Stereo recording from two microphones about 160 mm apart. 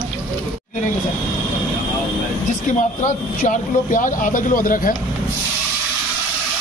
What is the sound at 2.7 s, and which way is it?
Speech, 50° left (ahead or behind).